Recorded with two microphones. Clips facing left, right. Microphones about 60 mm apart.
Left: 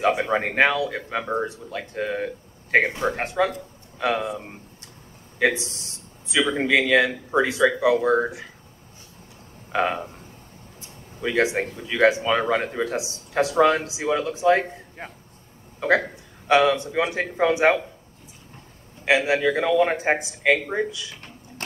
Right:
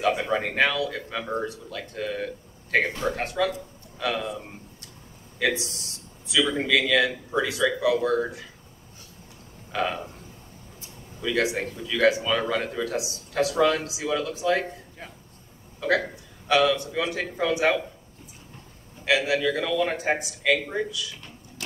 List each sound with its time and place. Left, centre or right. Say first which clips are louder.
0.2 s speech: left 3 dB; left
9.7 s speech: left 4 dB; left
10.8 s a sound: left 4 dB; left
11.8 s speech: left 2 dB; left
19.0 s speech: left 3 dB; left